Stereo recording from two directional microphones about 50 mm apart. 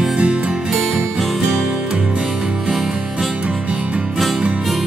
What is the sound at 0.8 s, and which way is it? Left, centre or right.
Music, centre.